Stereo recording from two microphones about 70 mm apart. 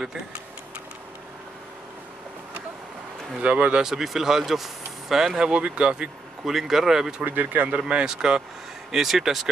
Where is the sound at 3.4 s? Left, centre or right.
Centre.